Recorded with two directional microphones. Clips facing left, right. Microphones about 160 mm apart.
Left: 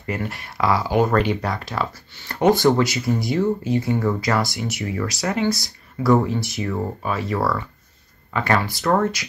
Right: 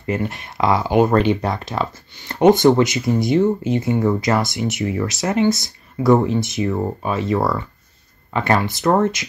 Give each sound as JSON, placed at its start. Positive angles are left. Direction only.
{"t": 0.0, "sound": "speech", "side_deg": -20}